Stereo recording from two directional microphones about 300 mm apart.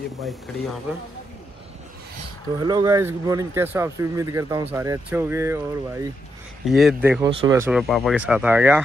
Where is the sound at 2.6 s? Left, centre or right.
Centre.